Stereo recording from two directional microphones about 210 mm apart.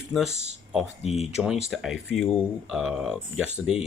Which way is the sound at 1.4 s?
Centre (ahead or behind).